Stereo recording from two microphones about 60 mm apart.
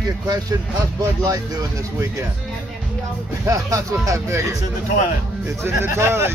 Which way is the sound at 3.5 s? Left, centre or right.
Right.